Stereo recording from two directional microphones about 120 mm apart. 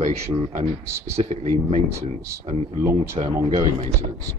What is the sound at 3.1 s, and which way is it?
Speech, 60° right (ahead or behind).